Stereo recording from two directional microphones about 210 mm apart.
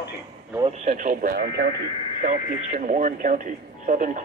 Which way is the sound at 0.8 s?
35° right (ahead or behind).